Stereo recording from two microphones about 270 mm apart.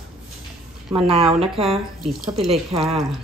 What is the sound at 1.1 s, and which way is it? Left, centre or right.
A woman's voice, right.